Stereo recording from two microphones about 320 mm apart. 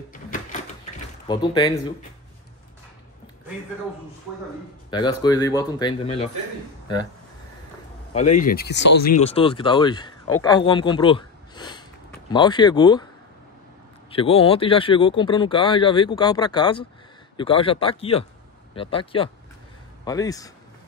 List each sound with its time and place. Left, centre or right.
0.1 s typewriter: left
1.2 s speech: centre
4.9 s speech: centre
8.4 s speech: left
9.3 s speech: centre
14.1 s speech: centre